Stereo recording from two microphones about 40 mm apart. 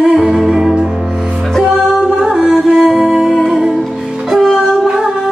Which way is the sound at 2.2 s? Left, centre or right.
Centre.